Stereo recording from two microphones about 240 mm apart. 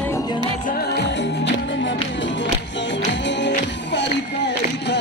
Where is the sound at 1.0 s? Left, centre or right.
Left.